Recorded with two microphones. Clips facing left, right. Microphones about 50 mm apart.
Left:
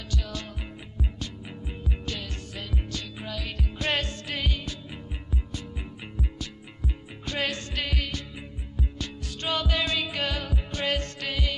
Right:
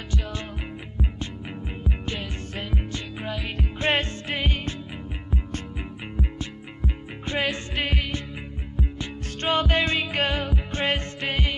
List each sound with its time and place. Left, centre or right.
1.9 s music: right
6.1 s music: right
7.3 s music: centre
9.4 s music: right